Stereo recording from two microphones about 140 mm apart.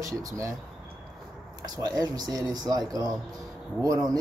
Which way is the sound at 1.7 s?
25° right (ahead or behind).